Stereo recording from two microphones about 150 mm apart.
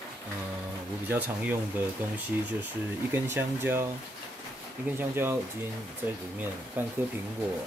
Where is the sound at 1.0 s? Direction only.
15° right (ahead or behind).